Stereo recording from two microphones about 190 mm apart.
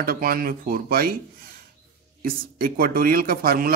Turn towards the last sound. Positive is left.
turn(degrees=-50)  # may be behind; listen again after turning